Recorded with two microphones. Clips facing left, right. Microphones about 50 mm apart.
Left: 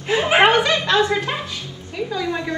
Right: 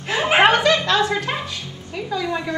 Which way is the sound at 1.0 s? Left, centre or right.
Centre.